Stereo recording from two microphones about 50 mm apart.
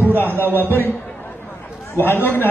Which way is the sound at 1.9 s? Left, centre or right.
Left.